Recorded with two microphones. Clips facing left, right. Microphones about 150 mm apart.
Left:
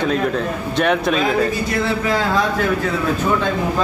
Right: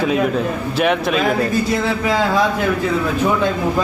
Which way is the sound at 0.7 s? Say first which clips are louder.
Even; centre (ahead or behind).